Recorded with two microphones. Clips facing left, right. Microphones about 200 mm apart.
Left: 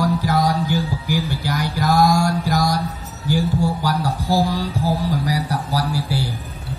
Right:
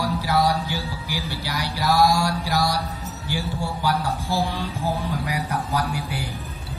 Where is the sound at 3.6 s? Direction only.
40° left (ahead or behind).